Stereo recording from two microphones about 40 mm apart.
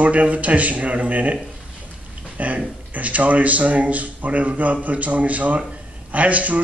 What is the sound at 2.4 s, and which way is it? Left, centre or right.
Speech, right.